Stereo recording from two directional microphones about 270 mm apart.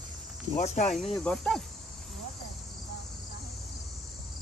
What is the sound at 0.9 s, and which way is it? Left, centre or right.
Cricket, centre.